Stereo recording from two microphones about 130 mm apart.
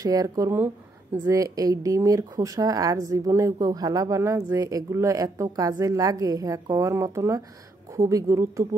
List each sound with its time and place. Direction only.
0.0 s a woman's voice: 25° right (ahead or behind)